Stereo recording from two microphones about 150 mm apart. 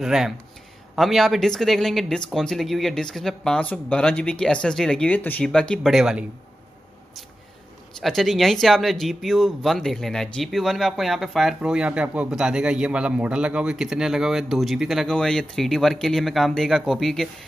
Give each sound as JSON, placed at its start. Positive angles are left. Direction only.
{"t": 0.0, "sound": "speech", "side_deg": -5}
{"t": 8.0, "sound": "speech", "side_deg": 0}